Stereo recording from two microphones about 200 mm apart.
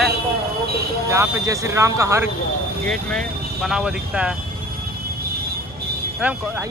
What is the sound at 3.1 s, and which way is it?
Speech, centre (ahead or behind).